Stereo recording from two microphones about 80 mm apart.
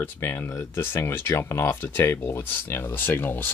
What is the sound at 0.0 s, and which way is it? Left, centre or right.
Speech, left.